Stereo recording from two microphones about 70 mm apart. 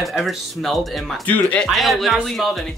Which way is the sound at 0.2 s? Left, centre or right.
Centre.